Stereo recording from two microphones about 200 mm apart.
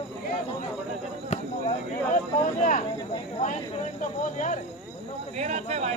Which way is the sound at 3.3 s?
35° left (ahead or behind).